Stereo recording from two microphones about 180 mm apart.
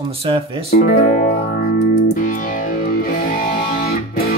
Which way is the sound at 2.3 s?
50° left (ahead or behind).